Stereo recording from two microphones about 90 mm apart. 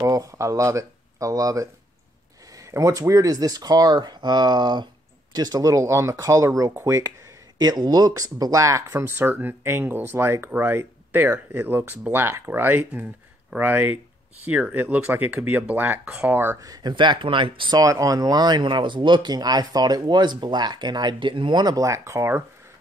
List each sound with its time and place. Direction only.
0.0 s speech: 35° right (ahead or behind)
7.5 s speech: 50° right (ahead or behind); by 16.3 s 15° right (ahead or behind)
16.6 s speech: 40° right (ahead or behind)
16.9 s speech: 65° right (ahead or behind)
17.7 s speech: 40° right (ahead or behind)